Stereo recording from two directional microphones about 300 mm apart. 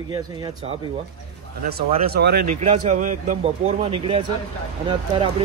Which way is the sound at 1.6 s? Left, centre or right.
Right.